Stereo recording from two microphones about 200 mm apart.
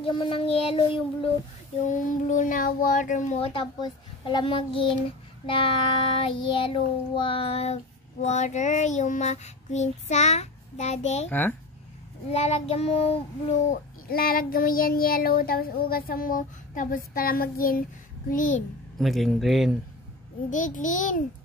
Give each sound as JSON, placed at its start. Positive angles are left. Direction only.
{"t": 0.0, "sound": "child singing", "side_deg": 25}
{"t": 1.9, "sound": "child singing", "side_deg": 40}
{"t": 11.2, "sound": "a child's voice", "side_deg": 10}
{"t": 12.3, "sound": "child singing", "side_deg": 30}
{"t": 13.7, "sound": "child singing", "side_deg": 45}
{"t": 18.9, "sound": "speech", "side_deg": 0}
{"t": 20.4, "sound": "child singing", "side_deg": 40}